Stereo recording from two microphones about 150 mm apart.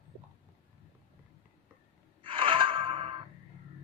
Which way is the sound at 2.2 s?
35° right (ahead or behind).